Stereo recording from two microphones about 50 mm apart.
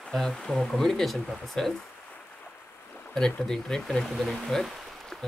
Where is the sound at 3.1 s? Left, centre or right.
Centre.